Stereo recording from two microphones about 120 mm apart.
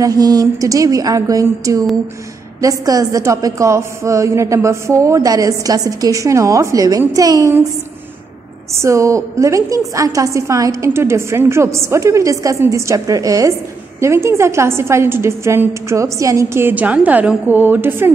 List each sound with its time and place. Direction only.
0.0 s a woman's voice: 30° right (ahead or behind)
8.7 s a woman's voice: 25° right (ahead or behind)